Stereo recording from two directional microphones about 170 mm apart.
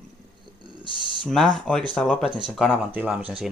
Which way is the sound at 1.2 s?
Centre (ahead or behind).